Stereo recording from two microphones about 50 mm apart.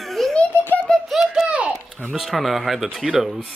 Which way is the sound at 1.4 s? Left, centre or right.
Right.